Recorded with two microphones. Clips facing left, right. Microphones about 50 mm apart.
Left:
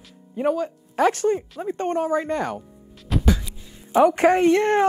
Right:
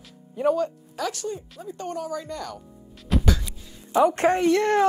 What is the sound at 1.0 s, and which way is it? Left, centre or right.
Speech, left.